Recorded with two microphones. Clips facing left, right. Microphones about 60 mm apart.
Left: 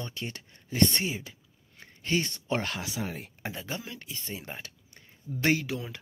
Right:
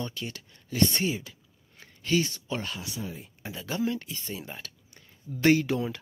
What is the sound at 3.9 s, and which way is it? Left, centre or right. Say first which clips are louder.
Speech: right 11 dB; centre.